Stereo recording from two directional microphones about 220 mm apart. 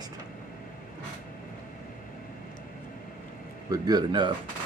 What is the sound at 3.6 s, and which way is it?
Speech, 15° right (ahead or behind).